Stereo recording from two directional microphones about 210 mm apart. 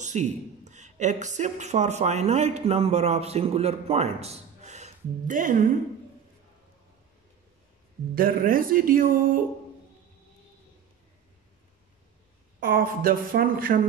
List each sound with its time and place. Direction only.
0.0 s speech: 35° right (ahead or behind)
8.1 s speech: 45° right (ahead or behind)
12.5 s speech: 45° right (ahead or behind)